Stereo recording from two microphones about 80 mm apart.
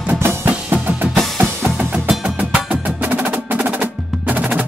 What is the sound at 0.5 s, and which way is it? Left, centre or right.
Drum, centre.